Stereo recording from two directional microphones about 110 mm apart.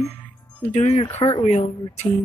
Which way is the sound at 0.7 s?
90° left.